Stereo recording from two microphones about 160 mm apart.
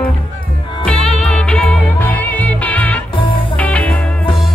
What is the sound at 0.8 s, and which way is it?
Music, 5° left (ahead or behind).